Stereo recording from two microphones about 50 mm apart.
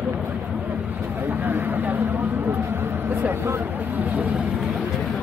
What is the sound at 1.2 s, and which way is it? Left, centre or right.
Vehicle, right.